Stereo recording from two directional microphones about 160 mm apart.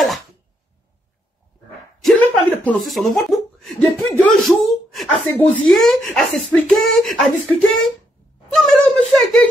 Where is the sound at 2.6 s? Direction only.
Centre (ahead or behind).